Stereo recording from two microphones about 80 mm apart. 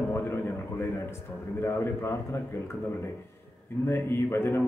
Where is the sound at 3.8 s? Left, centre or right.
Left.